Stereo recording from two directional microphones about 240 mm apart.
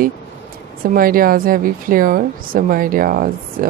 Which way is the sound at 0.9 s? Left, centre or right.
Right.